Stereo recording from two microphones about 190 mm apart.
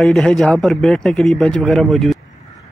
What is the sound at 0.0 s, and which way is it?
Speech, 5° left (ahead or behind).